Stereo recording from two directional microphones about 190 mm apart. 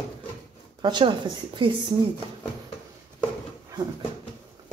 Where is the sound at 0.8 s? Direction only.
25° right (ahead or behind).